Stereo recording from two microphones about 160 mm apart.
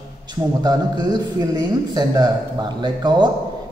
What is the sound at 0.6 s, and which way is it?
A man's voice, 25° right (ahead or behind).